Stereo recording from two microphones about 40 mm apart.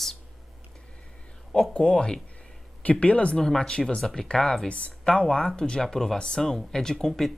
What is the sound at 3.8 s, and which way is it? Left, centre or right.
Speech, left.